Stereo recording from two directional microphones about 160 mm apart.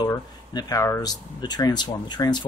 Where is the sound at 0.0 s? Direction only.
25° left (ahead or behind).